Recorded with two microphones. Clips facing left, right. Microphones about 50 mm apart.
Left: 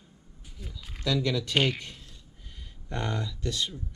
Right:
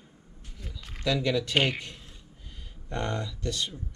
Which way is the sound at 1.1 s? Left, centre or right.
Right.